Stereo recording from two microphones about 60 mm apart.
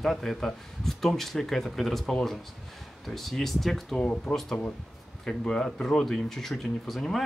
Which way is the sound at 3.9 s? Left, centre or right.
Centre.